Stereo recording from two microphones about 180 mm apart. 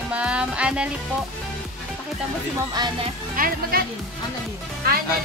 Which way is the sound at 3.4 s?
55° right (ahead or behind).